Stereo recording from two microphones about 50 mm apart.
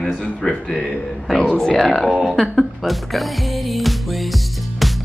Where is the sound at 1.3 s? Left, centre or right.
Centre.